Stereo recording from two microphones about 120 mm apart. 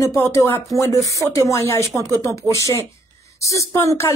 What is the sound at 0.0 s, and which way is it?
Speech, 25° left (ahead or behind).